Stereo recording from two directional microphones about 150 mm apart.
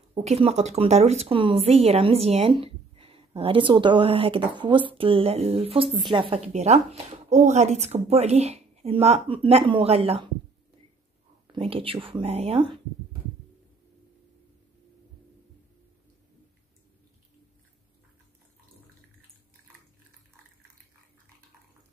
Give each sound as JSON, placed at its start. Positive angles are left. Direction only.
{"t": 0.1, "sound": "a woman's voice", "side_deg": -45}
{"t": 11.5, "sound": "speech", "side_deg": -40}